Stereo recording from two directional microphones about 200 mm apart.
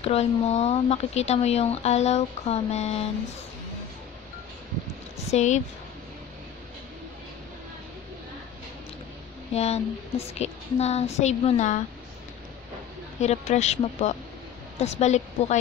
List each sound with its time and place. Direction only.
0.0 s speech: 30° left (ahead or behind)
5.3 s speech: 35° left (ahead or behind)
9.5 s speech: 30° left (ahead or behind)
13.2 s speech: 35° left (ahead or behind)